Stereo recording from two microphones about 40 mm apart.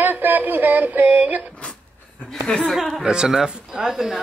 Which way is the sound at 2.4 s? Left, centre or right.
Centre.